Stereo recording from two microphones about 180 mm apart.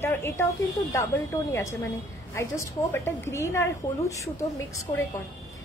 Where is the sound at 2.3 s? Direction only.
15° left (ahead or behind).